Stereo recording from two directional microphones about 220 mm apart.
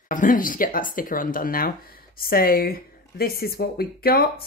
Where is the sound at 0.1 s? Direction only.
40° left (ahead or behind).